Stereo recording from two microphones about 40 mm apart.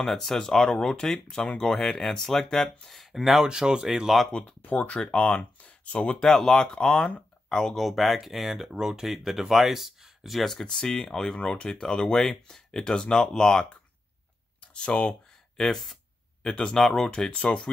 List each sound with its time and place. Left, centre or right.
0.0 s speech: centre
1.8 s speech: centre
3.4 s speech: centre
4.3 s speech: left
6.2 s speech: centre
7.7 s speech: centre
10.4 s speech: centre
11.4 s speech: left
11.7 s speech: centre
14.7 s speech: left
15.7 s speech: centre
16.4 s speech: left
16.7 s speech: centre
17.5 s speech: left